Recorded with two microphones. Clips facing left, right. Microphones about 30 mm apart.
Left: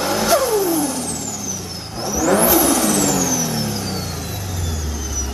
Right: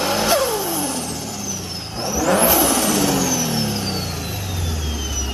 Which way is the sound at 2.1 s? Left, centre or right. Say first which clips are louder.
Left 1 dB; centre.